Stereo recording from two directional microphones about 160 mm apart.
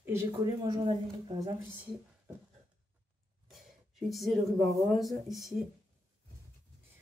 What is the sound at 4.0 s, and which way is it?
Speech, centre (ahead or behind).